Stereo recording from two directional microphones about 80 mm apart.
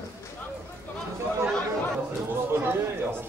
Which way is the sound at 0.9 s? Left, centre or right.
Left.